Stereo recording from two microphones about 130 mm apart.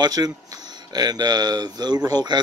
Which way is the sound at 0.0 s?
30° right (ahead or behind).